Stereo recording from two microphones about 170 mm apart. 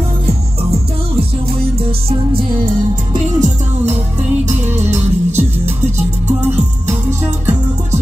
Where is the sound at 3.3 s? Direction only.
45° right (ahead or behind).